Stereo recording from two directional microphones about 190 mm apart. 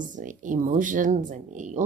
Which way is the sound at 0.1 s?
45° right (ahead or behind).